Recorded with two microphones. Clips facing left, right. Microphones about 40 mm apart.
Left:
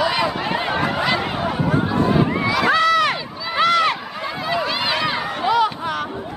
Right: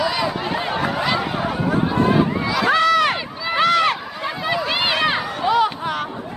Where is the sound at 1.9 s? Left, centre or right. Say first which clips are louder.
Right 2 dB; centre.